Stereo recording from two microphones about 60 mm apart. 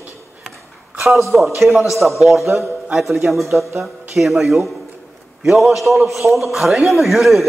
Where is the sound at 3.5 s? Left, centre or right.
Right.